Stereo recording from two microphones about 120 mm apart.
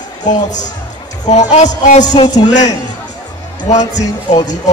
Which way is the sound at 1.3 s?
75° left (ahead or behind).